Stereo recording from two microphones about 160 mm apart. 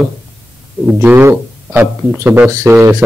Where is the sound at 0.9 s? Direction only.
15° right (ahead or behind).